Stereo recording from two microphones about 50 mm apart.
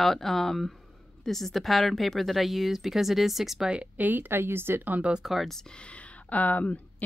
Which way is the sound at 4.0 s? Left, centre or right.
Right.